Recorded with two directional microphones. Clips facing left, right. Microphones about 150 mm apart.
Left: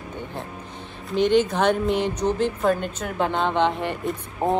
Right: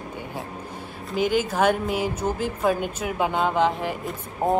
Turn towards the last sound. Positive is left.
turn(degrees=0)  # may be behind; listen again after turning